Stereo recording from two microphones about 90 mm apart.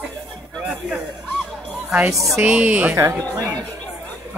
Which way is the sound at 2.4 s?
15° right (ahead or behind).